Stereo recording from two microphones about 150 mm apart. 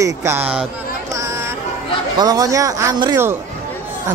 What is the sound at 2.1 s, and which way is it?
Speech, 25° right (ahead or behind).